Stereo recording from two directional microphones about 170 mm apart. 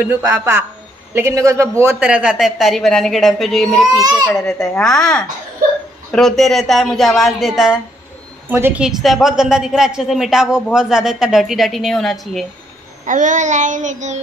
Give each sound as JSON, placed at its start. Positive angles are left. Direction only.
{"t": 0.0, "sound": "a woman's voice", "side_deg": -15}
{"t": 6.1, "sound": "a woman's voice", "side_deg": 0}
{"t": 13.0, "sound": "child singing", "side_deg": -50}